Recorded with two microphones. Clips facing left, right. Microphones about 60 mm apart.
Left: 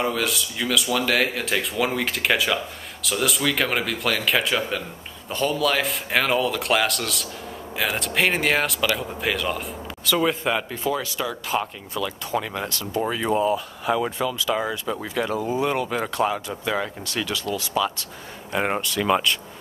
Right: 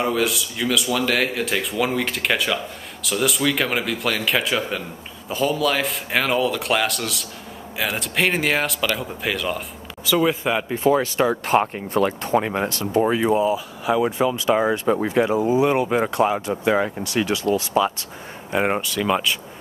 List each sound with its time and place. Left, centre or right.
0.0 s speech: centre
10.8 s speech: right
13.2 s speech: centre
14.1 s speech: right
15.2 s speech: centre
16.3 s speech: right
16.7 s speech: centre
18.5 s speech: centre